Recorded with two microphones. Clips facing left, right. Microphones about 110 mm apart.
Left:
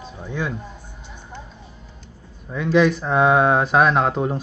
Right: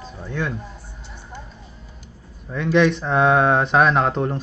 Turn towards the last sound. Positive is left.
turn(degrees=5)  # may be behind; listen again after turning